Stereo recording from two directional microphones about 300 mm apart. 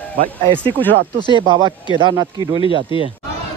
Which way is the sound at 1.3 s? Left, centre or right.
Centre.